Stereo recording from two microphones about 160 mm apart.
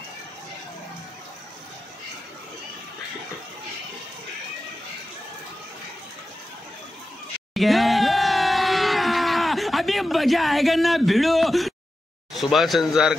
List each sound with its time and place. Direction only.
7.5 s crowd: centre (ahead or behind)
12.4 s speech: centre (ahead or behind)